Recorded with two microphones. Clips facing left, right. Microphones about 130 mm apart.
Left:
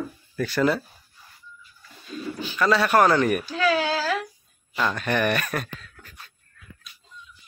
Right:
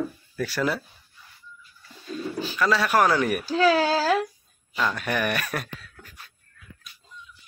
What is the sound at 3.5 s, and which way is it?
Speech, 35° right (ahead or behind).